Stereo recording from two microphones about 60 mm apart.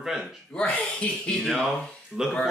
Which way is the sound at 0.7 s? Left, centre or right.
Centre.